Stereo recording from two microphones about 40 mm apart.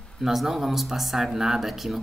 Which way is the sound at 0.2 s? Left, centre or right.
Centre.